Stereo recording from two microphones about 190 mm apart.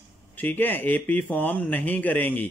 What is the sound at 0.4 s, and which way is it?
Speech, 10° left (ahead or behind).